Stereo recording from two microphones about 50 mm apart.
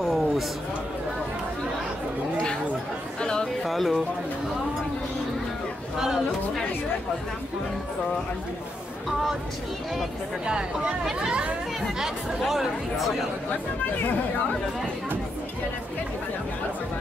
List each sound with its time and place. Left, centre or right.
0.0 s a sound: centre
3.2 s chatter: centre
3.6 s speech: centre
5.9 s speech: centre
10.4 s speech: centre
12.0 s speech: centre